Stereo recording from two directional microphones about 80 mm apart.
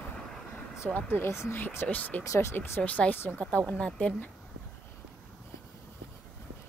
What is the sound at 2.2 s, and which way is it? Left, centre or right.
Speech, left.